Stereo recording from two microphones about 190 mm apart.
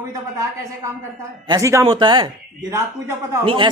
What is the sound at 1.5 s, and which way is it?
A man's voice, 15° right (ahead or behind).